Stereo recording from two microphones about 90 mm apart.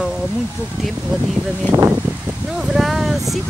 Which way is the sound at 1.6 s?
25° right (ahead or behind).